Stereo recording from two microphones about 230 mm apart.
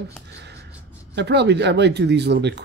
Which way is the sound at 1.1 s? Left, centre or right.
Right.